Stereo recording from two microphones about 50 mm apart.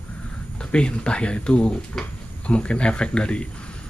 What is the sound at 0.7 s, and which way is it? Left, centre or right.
Speech, centre.